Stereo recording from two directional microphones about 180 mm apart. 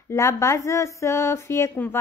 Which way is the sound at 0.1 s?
15° left (ahead or behind).